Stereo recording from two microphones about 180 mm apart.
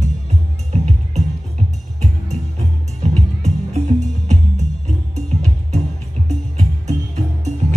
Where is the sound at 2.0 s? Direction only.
35° right (ahead or behind).